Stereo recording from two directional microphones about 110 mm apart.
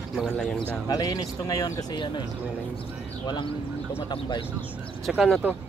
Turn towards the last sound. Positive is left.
turn(degrees=-5)  # may be behind; listen again after turning